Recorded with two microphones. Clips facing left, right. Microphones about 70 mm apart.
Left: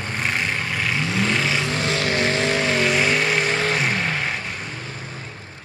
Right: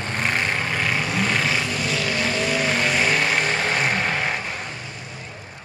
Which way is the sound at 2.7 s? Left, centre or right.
Centre.